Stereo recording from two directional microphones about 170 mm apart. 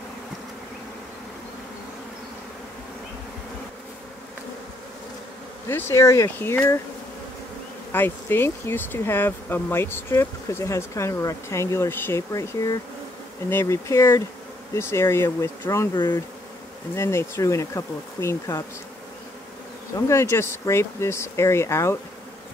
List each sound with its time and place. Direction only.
5.7 s speech: 15° left (ahead or behind)
7.9 s speech: 15° left (ahead or behind)
16.9 s speech: 15° left (ahead or behind)
20.1 s speech: 15° left (ahead or behind)